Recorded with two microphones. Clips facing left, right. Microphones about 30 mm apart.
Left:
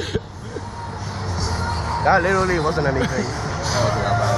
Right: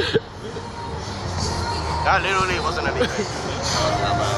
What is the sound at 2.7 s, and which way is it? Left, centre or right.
Speech, right.